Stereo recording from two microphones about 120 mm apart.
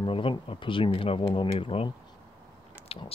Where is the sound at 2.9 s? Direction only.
55° left (ahead or behind).